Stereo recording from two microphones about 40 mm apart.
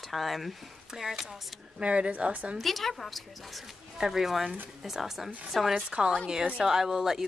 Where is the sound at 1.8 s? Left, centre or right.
Right.